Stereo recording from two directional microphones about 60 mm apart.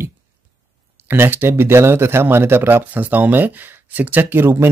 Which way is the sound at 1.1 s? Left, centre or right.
Right.